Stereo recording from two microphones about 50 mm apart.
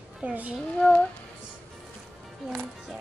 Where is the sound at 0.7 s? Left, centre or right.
Left.